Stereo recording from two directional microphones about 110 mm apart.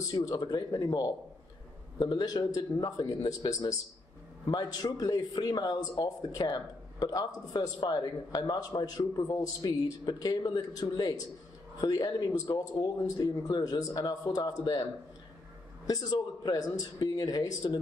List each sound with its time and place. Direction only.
0.1 s speech: 35° left (ahead or behind)
15.9 s speech: 40° left (ahead or behind)